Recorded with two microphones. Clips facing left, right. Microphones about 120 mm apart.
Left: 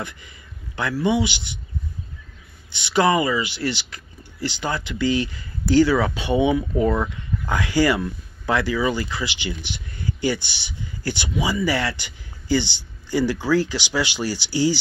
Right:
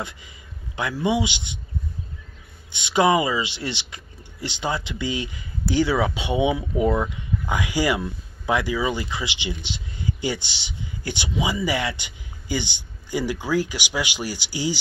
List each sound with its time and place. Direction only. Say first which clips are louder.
0.7 s speech: left 2 dB; 15° right (ahead or behind)
2.7 s speech: even; 15° right (ahead or behind)